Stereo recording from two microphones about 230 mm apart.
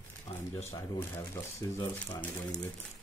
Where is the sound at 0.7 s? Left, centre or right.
Centre.